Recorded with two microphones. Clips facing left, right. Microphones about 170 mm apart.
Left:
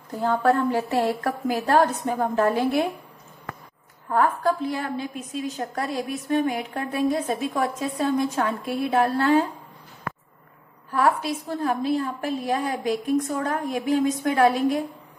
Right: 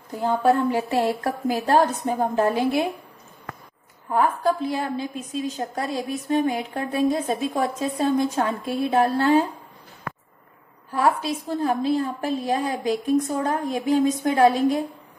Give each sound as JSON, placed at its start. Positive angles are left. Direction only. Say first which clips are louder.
{"t": 0.1, "sound": "a woman's voice", "louder": "right 1 dB", "side_deg": -15}
{"t": 4.4, "sound": "a woman's voice", "louder": "right 1 dB", "side_deg": -25}
{"t": 10.9, "sound": "a woman's voice", "louder": "even", "side_deg": -25}